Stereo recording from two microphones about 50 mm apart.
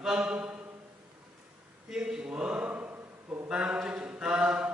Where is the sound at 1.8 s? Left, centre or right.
Centre.